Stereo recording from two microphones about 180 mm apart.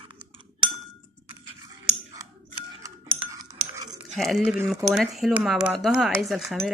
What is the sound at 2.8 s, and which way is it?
Chink, 20° right (ahead or behind).